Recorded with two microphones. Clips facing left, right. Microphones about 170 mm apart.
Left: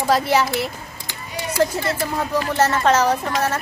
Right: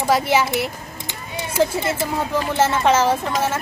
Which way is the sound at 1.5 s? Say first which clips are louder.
Right 1 dB; 25° right (ahead or behind).